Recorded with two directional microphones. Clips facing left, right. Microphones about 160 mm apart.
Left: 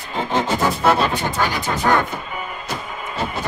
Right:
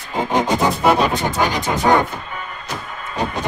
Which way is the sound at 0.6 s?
15° right (ahead or behind).